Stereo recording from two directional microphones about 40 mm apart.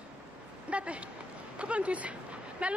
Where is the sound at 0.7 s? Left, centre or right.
Right.